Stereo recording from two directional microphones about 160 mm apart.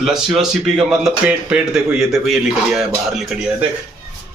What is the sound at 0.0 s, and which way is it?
Speech, centre (ahead or behind).